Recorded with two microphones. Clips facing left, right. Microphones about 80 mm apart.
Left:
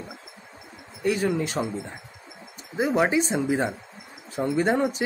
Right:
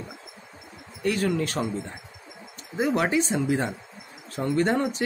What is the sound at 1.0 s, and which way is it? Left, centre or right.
Speech, centre.